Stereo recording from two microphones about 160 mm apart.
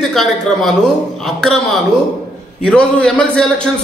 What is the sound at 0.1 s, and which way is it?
Speech, centre (ahead or behind).